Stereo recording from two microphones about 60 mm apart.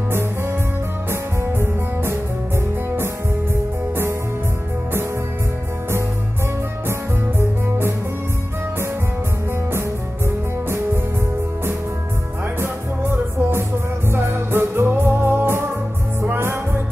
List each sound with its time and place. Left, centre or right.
1.4 s music: right
6.9 s music: right
12.5 s music: right